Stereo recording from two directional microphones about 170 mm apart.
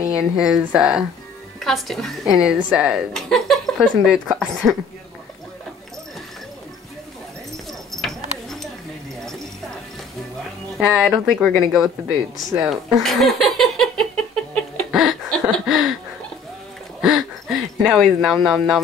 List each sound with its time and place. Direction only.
0.5 s a woman's voice: 5° right (ahead or behind)
7.9 s keys jangling: centre (ahead or behind)
10.8 s a woman's voice: centre (ahead or behind)
12.5 s a sound: centre (ahead or behind)
17.0 s speech: 5° right (ahead or behind)